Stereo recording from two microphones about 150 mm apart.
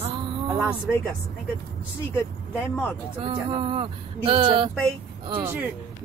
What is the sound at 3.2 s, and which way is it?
Speech, 35° right (ahead or behind).